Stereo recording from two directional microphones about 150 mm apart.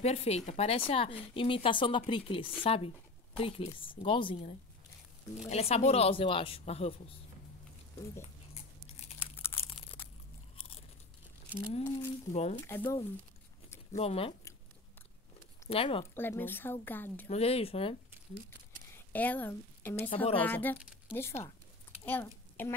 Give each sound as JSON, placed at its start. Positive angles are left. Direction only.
{"t": 0.0, "sound": "speech", "side_deg": 45}
{"t": 8.2, "sound": "a sound", "side_deg": 45}
{"t": 11.7, "sound": "speech", "side_deg": 45}
{"t": 12.5, "sound": "speech", "side_deg": 15}
{"t": 13.9, "sound": "speech", "side_deg": 40}
{"t": 15.7, "sound": "speech", "side_deg": 40}
{"t": 16.2, "sound": "speech", "side_deg": 15}
{"t": 17.3, "sound": "speech", "side_deg": 40}
{"t": 19.1, "sound": "speech", "side_deg": 10}